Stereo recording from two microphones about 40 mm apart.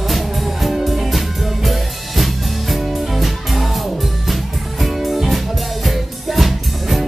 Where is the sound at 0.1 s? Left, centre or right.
Centre.